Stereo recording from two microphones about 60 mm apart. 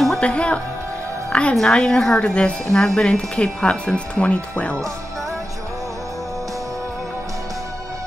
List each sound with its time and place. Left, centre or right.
0.2 s a woman's voice: centre